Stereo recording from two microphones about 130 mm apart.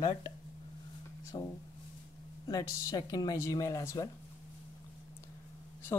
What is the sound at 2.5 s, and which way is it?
Speech, 30° left (ahead or behind).